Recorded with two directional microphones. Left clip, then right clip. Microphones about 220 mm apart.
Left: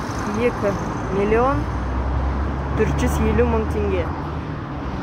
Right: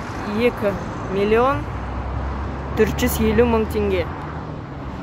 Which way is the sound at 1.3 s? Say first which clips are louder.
Right 2 dB; 35° right (ahead or behind).